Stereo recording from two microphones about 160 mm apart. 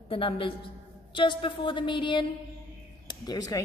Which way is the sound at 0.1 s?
35° left (ahead or behind).